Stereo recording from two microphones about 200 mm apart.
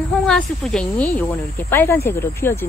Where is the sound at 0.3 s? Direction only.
5° left (ahead or behind).